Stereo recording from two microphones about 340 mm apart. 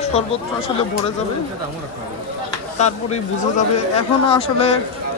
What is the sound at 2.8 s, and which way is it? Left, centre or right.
Speech, centre.